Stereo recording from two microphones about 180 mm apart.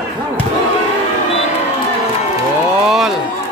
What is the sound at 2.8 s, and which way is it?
Run, centre (ahead or behind).